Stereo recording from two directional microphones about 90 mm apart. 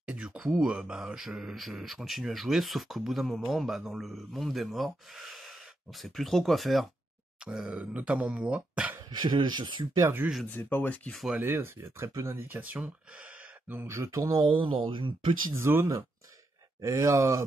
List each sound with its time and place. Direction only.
0.0 s speech: 10° right (ahead or behind)
9.2 s speech: 55° right (ahead or behind)
10.0 s speech: 25° right (ahead or behind)
10.5 s speech: 25° left (ahead or behind)
11.1 s speech: centre (ahead or behind)
11.3 s speech: 25° right (ahead or behind)
13.8 s speech: 35° right (ahead or behind)
14.4 s speech: 65° right (ahead or behind)
15.5 s speech: 25° right (ahead or behind)